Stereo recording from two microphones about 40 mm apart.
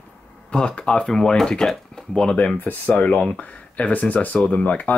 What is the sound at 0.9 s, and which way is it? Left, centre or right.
Speech, centre.